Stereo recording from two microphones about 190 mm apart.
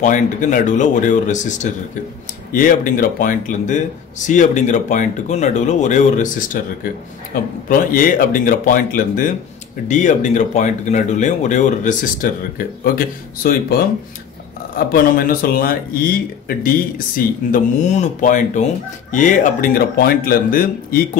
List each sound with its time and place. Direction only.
0.0 s speech: 40° left (ahead or behind)
14.9 s speech: 50° left (ahead or behind)